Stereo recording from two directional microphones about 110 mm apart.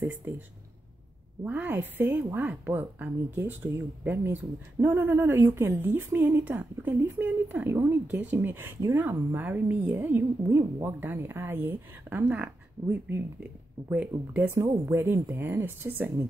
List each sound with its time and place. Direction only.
1.4 s speech: 15° right (ahead or behind)